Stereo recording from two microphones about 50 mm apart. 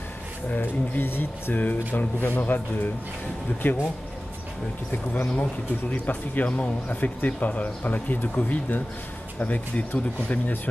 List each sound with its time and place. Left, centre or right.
0.6 s speech: left
1.6 s speech: left
5.1 s speech: left